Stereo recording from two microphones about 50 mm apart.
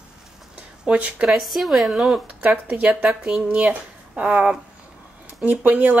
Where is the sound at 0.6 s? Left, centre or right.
Right.